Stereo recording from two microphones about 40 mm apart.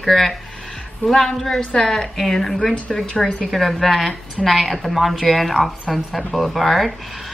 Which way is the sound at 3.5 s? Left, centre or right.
Centre.